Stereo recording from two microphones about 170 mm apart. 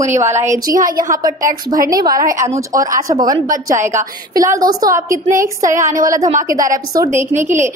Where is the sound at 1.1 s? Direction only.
20° right (ahead or behind).